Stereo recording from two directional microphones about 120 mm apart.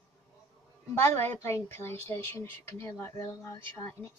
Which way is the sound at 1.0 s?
20° left (ahead or behind).